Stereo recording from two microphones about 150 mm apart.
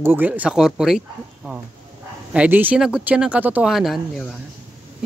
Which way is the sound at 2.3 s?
10° right (ahead or behind).